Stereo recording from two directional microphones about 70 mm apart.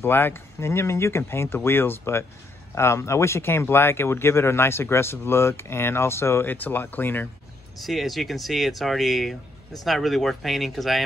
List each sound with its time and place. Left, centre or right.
0.0 s speech: left
6.5 s speech: left
7.8 s speech: centre